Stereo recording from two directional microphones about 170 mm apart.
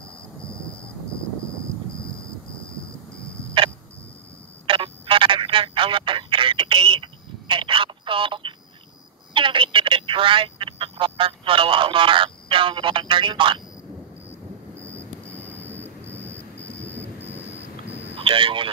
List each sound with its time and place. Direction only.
4.6 s telephone: 30° right (ahead or behind)
14.9 s vehicle: 10° left (ahead or behind)
15.8 s thunder: 10° left (ahead or behind)
18.1 s telephone: 30° right (ahead or behind)